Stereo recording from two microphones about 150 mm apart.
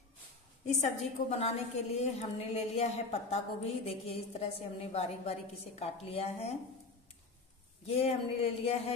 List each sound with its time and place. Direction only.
0.7 s a woman's voice: 50° left (ahead or behind)
7.8 s speech: 40° left (ahead or behind)